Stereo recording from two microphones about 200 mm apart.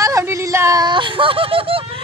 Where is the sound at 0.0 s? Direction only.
15° right (ahead or behind).